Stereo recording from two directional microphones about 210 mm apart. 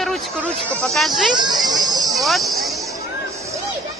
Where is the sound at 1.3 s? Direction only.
20° right (ahead or behind).